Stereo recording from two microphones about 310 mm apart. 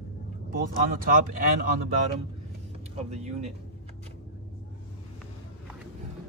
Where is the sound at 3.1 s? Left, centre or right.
Right.